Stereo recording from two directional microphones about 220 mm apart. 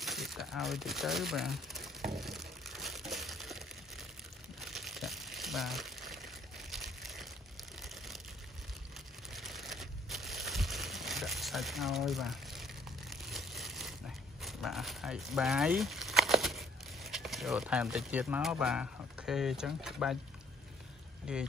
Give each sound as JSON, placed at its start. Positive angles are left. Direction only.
{"t": 0.0, "sound": "crumpling", "side_deg": 0}
{"t": 2.1, "sound": "crushing", "side_deg": 0}
{"t": 4.6, "sound": "crumpling", "side_deg": 0}
{"t": 9.3, "sound": "a sound", "side_deg": 0}
{"t": 14.4, "sound": "speech", "side_deg": 0}
{"t": 21.3, "sound": "speech", "side_deg": -5}